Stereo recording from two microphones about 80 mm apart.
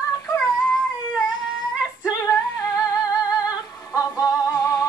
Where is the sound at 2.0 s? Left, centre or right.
Left.